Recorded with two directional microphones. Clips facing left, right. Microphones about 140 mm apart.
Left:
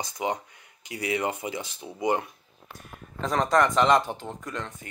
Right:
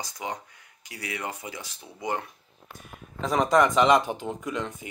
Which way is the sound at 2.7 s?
Centre (ahead or behind).